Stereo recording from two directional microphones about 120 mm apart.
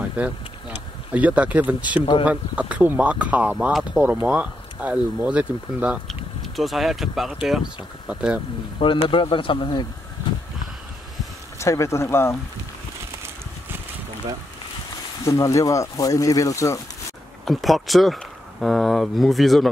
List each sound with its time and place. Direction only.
0.2 s speech: 10° right (ahead or behind)
6.0 s speech: centre (ahead or behind)
8.7 s speech: 50° left (ahead or behind)
11.5 s speech: 25° left (ahead or behind)
15.2 s speech: 25° left (ahead or behind)
17.5 s speech: centre (ahead or behind)